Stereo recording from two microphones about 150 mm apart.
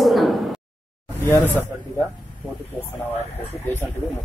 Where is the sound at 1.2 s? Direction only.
15° left (ahead or behind).